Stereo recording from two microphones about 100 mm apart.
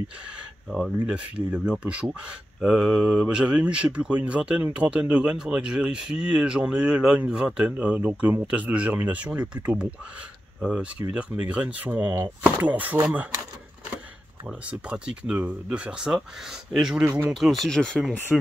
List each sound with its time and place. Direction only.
0.7 s speech: 5° right (ahead or behind)
14.7 s speech: 10° right (ahead or behind)